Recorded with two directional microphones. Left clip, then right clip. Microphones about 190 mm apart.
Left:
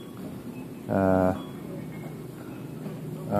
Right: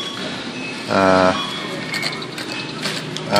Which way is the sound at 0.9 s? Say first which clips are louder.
Right 10 dB; 15° right (ahead or behind).